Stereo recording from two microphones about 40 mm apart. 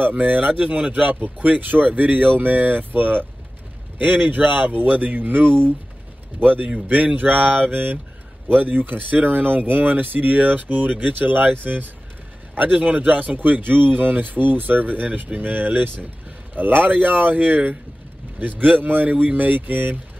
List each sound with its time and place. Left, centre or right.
0.2 s speech: right
13.4 s speech: right